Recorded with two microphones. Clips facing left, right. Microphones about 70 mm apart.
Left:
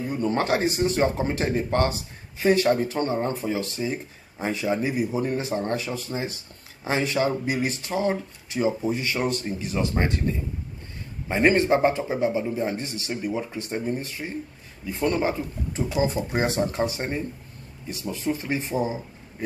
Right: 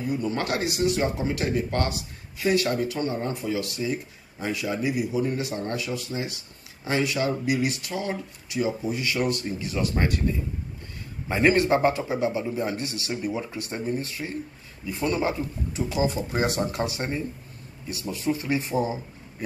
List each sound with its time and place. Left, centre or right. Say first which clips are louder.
0.2 s speech: left 4 dB; left
11.3 s speech: left 1 dB; left
15.0 s speech: left 1 dB; left